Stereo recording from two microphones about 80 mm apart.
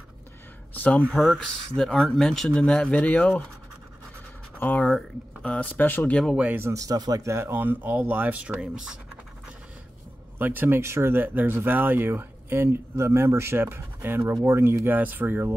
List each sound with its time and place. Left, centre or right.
0.7 s speech: centre
4.6 s speech: left
6.3 s speech: centre
6.6 s speech: right; by 8.9 s centre
10.4 s speech: right